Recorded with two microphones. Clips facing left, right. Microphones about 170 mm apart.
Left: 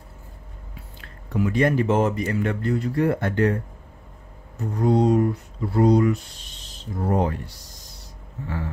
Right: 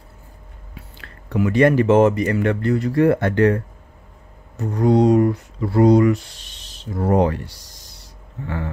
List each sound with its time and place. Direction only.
0.9 s speech: 75° right (ahead or behind)